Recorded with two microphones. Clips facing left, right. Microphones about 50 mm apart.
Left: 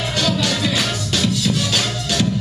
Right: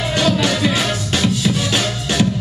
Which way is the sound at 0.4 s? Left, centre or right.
Right.